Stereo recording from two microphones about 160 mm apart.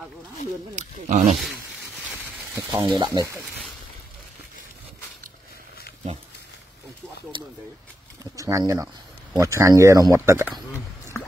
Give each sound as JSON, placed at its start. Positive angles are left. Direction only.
{"t": 0.7, "sound": "speech", "side_deg": -45}
{"t": 2.7, "sound": "speech", "side_deg": -30}
{"t": 8.2, "sound": "speech", "side_deg": -20}